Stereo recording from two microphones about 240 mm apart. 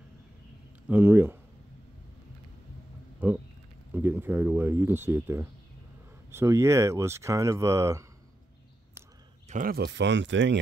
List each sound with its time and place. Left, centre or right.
0.8 s speech: centre
3.2 s a sound: centre
6.3 s speech: centre
9.5 s speech: right